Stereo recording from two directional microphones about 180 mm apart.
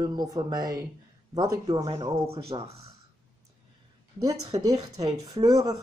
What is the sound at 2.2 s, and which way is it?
Speech, 35° right (ahead or behind).